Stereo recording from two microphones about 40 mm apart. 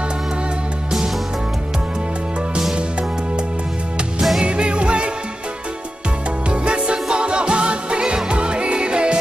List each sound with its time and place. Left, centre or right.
4.4 s music: right
6.5 s music: right